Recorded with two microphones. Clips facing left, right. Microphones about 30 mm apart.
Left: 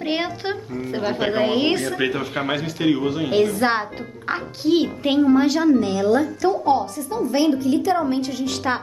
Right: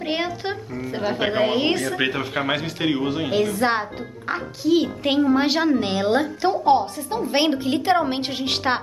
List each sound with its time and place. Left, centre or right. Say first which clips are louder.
0.0 s a child's voice: left 1 dB; centre
1.0 s a woman's voice: even; centre
2.0 s a man's voice: even; centre
3.3 s a child's voice: left 3 dB; centre
4.3 s a child's voice: left 1 dB; centre
5.3 s a woman's voice: left 3 dB; right